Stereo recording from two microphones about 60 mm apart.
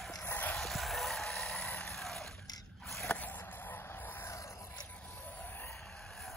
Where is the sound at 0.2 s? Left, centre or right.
Left.